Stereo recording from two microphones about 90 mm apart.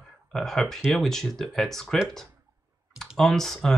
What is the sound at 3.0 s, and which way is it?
Speech, 5° left (ahead or behind).